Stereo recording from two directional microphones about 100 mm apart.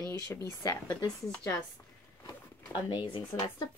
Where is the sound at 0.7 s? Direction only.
40° left (ahead or behind).